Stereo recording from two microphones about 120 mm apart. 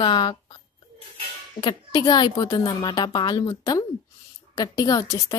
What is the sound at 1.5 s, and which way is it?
A woman's voice, 40° left (ahead or behind).